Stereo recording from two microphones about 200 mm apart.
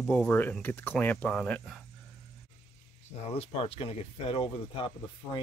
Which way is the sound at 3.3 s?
30° left (ahead or behind).